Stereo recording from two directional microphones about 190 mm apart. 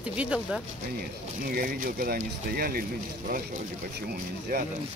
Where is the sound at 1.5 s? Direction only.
50° right (ahead or behind).